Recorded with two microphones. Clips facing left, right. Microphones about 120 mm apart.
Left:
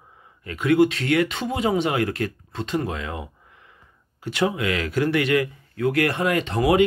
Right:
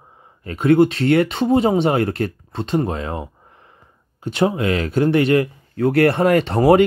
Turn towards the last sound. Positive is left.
turn(degrees=-40)  # may be behind; listen again after turning